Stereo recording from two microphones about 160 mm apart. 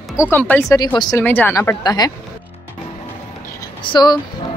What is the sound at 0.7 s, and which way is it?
Speech, 25° left (ahead or behind).